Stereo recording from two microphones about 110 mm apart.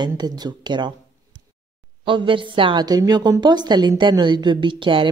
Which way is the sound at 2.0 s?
50° right (ahead or behind).